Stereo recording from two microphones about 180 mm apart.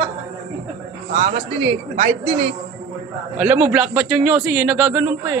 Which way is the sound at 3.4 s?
10° right (ahead or behind).